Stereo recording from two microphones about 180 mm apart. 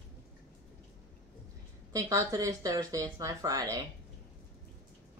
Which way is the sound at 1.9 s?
15° right (ahead or behind).